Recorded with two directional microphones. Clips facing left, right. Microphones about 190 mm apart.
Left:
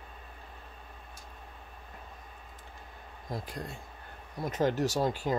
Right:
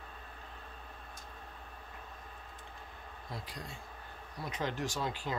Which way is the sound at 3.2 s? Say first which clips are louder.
Left 7 dB; 45° left (ahead or behind).